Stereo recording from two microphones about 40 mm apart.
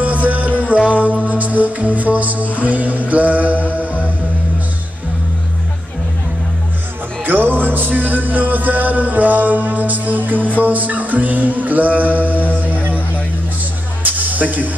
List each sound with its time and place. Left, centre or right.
0.0 s music: right
7.2 s music: right